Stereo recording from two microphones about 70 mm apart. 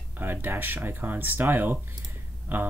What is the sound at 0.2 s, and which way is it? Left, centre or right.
Speech, right.